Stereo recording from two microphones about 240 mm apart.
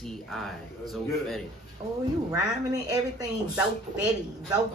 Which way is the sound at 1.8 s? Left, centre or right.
Centre.